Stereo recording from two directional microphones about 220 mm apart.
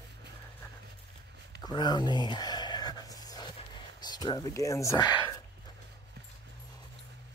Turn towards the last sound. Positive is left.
turn(degrees=15)  # may be behind; listen again after turning